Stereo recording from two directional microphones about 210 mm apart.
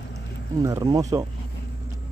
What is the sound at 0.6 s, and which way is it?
Speech, 15° right (ahead or behind).